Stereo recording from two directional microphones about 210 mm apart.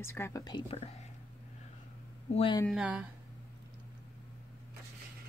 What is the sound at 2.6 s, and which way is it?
Speech, 5° right (ahead or behind).